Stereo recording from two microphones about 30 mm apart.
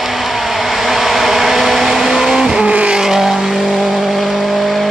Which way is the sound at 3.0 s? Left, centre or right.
Centre.